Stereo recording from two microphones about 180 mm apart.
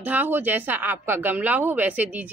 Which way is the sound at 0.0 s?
10° right (ahead or behind).